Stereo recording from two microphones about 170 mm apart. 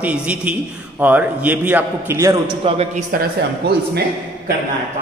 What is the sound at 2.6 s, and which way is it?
Speech, 40° right (ahead or behind).